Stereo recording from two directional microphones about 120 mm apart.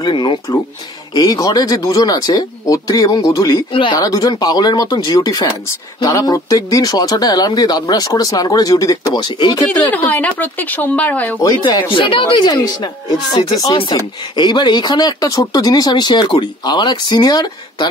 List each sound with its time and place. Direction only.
0.0 s speech: 40° left (ahead or behind)
9.8 s speech: 15° left (ahead or behind)
11.4 s speech: 35° left (ahead or behind)